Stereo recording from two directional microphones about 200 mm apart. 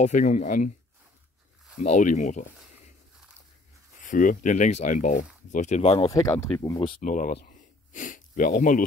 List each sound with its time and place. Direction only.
0.0 s speech: 40° left (ahead or behind)
1.8 s speech: 35° left (ahead or behind)
4.0 s speech: 40° left (ahead or behind)
6.0 s speech: 15° left (ahead or behind)
7.0 s speech: 40° left (ahead or behind)
7.3 s a sound: 40° left (ahead or behind)